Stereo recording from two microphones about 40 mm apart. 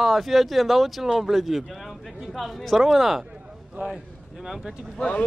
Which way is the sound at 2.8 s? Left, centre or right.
Centre.